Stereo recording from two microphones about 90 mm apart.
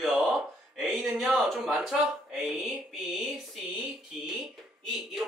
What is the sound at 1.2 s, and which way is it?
Speech, 15° right (ahead or behind).